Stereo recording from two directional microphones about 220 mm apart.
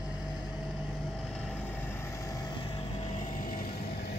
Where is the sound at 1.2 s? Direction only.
5° left (ahead or behind); by 3.6 s 35° left (ahead or behind).